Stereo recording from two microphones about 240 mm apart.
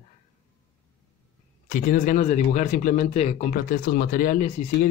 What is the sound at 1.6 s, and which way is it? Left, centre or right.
Speech, left.